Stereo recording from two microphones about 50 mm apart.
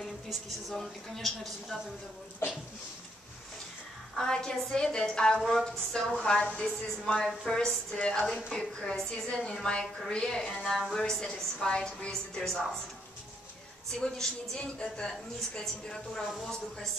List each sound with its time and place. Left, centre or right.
0.3 s a woman's voice: centre
4.2 s a woman's voice: centre
13.9 s a woman's voice: centre